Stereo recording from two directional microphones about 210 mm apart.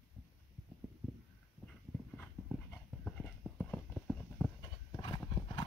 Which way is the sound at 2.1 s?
5° left (ahead or behind).